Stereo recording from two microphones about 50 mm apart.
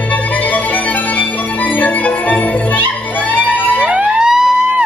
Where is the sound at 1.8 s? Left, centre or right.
Left.